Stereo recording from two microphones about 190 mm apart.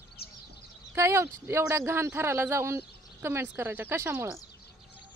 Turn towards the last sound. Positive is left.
turn(degrees=-10)  # may be behind; listen again after turning